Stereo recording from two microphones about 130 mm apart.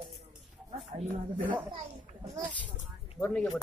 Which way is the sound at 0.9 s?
85° right.